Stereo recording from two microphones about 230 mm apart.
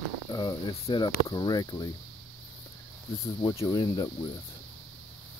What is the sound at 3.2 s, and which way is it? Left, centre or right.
Speech, centre.